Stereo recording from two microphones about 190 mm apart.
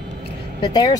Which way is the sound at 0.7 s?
25° left (ahead or behind).